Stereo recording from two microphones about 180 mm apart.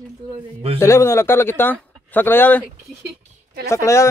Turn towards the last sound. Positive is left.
turn(degrees=15)  # may be behind; listen again after turning